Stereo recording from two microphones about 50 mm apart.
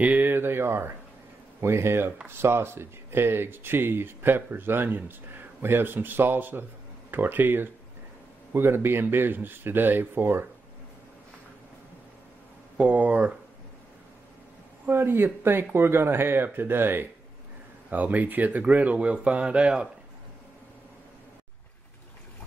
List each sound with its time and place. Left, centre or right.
0.0 s a sound: right
0.3 s speech: right
12.7 s speech: right
14.9 s speech: right
17.8 s speech: right